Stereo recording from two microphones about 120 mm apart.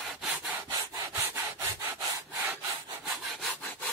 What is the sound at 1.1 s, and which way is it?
Wood, 20° right (ahead or behind).